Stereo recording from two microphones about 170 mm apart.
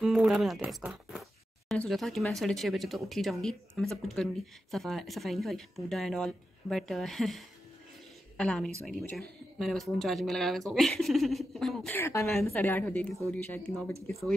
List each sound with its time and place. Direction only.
0.0 s speech: 5° right (ahead or behind)
12.0 s a woman's voice: 15° left (ahead or behind)